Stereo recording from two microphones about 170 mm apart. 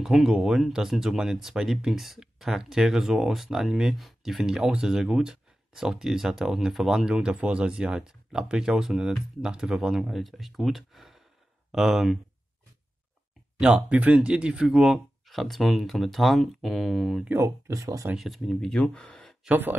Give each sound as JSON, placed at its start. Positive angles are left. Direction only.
{"t": 0.0, "sound": "speech", "side_deg": -5}
{"t": 13.6, "sound": "speech", "side_deg": -5}
{"t": 17.3, "sound": "speech", "side_deg": -15}
{"t": 18.1, "sound": "speech", "side_deg": 0}